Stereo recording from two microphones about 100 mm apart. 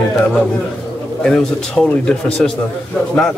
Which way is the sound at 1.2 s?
5° left (ahead or behind).